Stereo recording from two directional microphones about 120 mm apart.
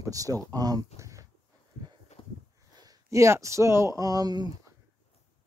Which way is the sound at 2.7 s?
30° right (ahead or behind).